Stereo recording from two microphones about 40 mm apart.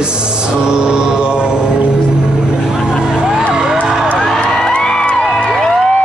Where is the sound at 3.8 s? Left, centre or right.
Centre.